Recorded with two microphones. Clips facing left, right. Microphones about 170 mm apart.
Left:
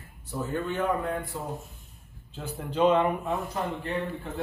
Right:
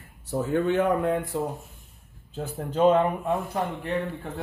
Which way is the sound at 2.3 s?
45° right (ahead or behind).